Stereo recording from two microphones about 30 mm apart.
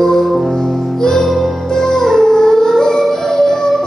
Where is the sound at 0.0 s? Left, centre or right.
Centre.